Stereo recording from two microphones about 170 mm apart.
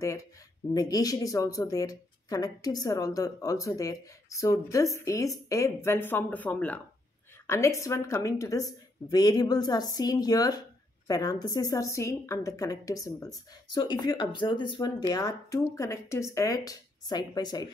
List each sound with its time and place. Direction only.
0.0 s a woman's voice: 15° left (ahead or behind)